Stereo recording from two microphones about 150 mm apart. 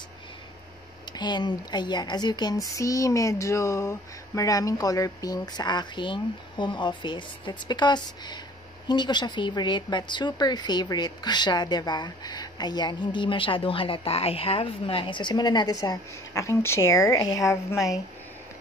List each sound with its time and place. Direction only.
1.1 s speech: 30° left (ahead or behind)